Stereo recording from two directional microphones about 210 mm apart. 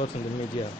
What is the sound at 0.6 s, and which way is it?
Speech, 25° left (ahead or behind).